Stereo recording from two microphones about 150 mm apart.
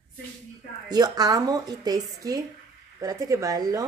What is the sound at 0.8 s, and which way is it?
Speech, 25° right (ahead or behind).